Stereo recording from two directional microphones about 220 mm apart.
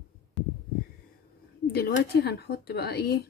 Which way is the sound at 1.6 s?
45° left (ahead or behind).